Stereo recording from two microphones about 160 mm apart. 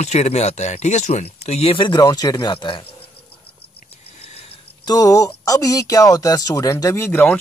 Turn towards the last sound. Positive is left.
turn(degrees=15)  # may be behind; listen again after turning